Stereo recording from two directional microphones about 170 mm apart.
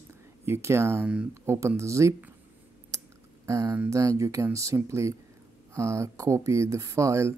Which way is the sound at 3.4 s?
15° right (ahead or behind).